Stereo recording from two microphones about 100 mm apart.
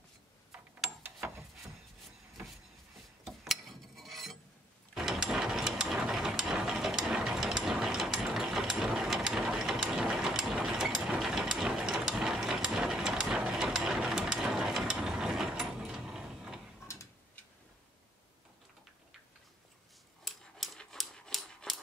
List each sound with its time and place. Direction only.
3.3 s mechanisms: centre (ahead or behind)
4.9 s ratchet: 5° right (ahead or behind)
16.8 s tick-tock: 30° left (ahead or behind)
20.2 s dog: 5° left (ahead or behind)